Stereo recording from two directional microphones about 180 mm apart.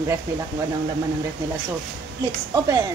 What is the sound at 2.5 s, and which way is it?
Speech, 20° right (ahead or behind).